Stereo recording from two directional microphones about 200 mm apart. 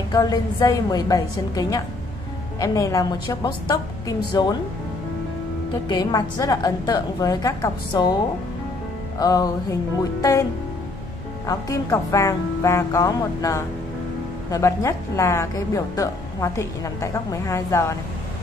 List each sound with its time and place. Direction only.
0.1 s a woman's voice: 20° left (ahead or behind)
5.9 s a woman's voice: 20° left (ahead or behind)
9.2 s a woman's voice: 20° left (ahead or behind)
11.4 s a woman's voice: 15° left (ahead or behind)